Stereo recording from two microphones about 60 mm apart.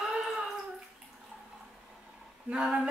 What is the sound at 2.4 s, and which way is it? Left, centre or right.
Speech, centre.